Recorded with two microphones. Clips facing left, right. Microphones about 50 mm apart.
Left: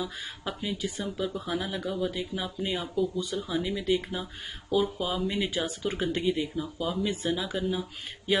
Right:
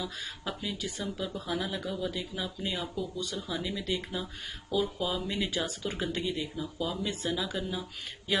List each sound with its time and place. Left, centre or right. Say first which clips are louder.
0.0 s speech: left 2 dB; centre
0.7 s speech: left 3 dB; left
1.1 s speech: left 2 dB; centre